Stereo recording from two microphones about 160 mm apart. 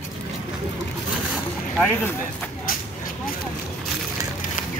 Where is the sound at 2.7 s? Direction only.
65° left (ahead or behind).